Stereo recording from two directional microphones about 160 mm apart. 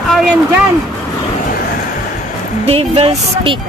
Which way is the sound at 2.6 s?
40° right (ahead or behind).